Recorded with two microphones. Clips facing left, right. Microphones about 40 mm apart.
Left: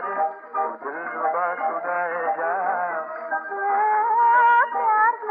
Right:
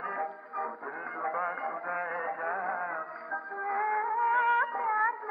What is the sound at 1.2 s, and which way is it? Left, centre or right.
Music, left.